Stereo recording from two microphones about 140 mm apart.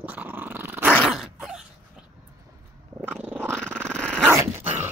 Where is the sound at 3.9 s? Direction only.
5° left (ahead or behind).